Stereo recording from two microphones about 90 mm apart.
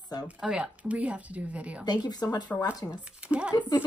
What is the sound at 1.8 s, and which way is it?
Speech, 50° left (ahead or behind).